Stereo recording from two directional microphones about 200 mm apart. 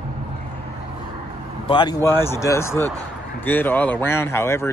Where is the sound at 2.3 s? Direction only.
15° left (ahead or behind).